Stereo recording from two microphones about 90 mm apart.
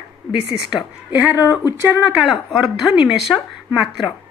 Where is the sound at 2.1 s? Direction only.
5° right (ahead or behind).